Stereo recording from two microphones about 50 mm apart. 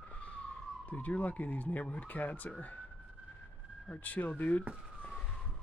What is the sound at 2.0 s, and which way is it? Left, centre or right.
Speech, left.